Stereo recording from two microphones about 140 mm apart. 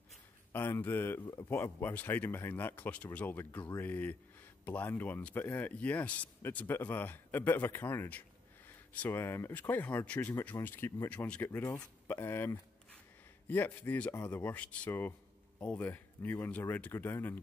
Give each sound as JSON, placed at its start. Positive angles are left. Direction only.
{"t": 0.5, "sound": "speech", "side_deg": 15}